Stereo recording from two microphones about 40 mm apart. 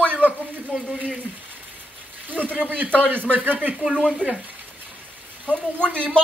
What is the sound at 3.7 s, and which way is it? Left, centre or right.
Speech, centre.